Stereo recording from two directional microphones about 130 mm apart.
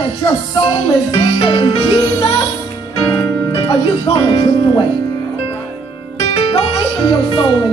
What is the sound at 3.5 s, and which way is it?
Music, 45° left (ahead or behind).